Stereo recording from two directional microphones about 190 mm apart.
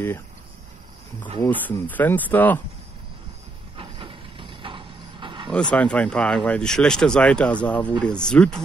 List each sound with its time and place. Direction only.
1.4 s speech: 10° left (ahead or behind)
3.7 s vehicle: 25° right (ahead or behind)
5.5 s speech: 5° left (ahead or behind)